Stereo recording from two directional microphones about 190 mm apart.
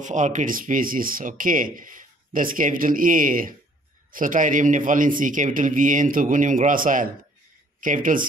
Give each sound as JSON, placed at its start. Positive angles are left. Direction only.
{"t": 0.0, "sound": "speech", "side_deg": -40}